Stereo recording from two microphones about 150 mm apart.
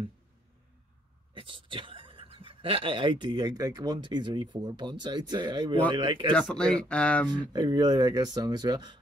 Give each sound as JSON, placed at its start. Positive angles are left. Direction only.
{"t": 1.3, "sound": "speech", "side_deg": -35}
{"t": 6.4, "sound": "speech", "side_deg": 5}
{"t": 7.5, "sound": "speech", "side_deg": -25}